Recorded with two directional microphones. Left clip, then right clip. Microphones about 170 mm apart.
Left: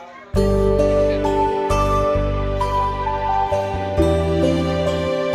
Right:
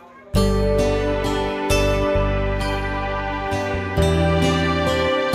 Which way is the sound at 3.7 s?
Centre (ahead or behind).